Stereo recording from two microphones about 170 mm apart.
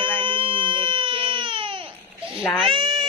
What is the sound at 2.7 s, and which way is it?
Speech, 30° right (ahead or behind).